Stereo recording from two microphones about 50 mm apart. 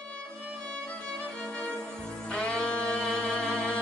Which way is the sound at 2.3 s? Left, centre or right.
Centre.